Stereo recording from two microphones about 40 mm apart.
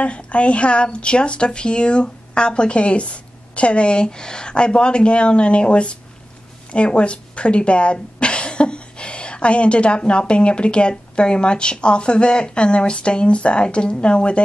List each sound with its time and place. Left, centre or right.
0.0 s speech: left